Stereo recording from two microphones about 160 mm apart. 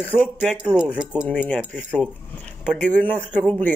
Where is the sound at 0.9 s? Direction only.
5° right (ahead or behind).